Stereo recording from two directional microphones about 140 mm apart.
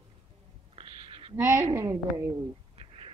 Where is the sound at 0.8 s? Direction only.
40° right (ahead or behind).